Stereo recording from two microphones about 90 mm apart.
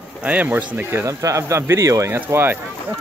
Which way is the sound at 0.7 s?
25° right (ahead or behind).